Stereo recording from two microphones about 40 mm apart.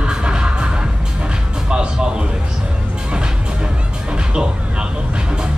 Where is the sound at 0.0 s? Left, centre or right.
Right.